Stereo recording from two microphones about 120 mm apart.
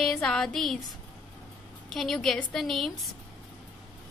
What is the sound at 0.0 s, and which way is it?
A woman's voice, 5° left (ahead or behind).